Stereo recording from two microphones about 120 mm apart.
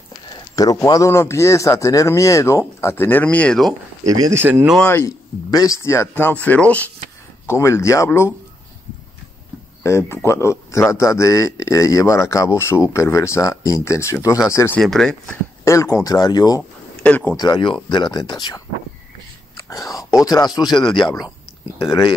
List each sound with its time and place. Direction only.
0.6 s a man's voice: 30° left (ahead or behind); by 3.7 s 5° left (ahead or behind)
4.0 s speech: 25° right (ahead or behind)
4.8 s a man's voice: 25° left (ahead or behind)
7.4 s a man's voice: 25° left (ahead or behind)
9.8 s a man's voice: 25° left (ahead or behind)
14.8 s speech: 5° left (ahead or behind)
15.6 s a man's voice: 25° left (ahead or behind)
17.0 s speech: 10° left (ahead or behind)
17.4 s speech: 40° left (ahead or behind)
19.5 s wail: 30° left (ahead or behind)
20.2 s speech: 30° left (ahead or behind)